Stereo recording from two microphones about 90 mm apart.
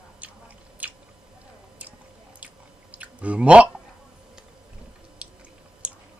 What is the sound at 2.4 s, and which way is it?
Chewing, 15° right (ahead or behind).